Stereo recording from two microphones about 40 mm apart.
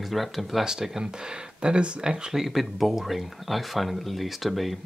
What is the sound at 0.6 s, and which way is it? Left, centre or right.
Speech, centre.